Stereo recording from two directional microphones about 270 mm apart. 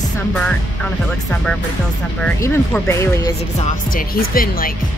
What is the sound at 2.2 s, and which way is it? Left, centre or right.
Speech, centre.